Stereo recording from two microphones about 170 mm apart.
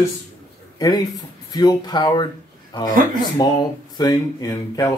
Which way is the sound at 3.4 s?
25° left (ahead or behind).